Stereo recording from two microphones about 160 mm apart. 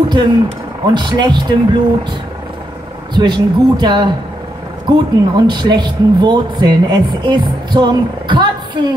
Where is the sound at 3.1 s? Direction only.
25° right (ahead or behind).